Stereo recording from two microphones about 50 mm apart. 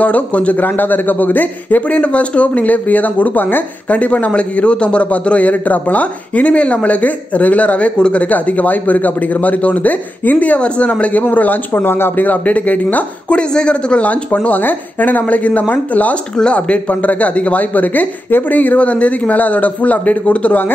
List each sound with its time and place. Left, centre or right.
0.0 s a man's voice: left
1.9 s a man's voice: left
3.9 s a man's voice: left
11.7 s a man's voice: left
13.4 s a man's voice: centre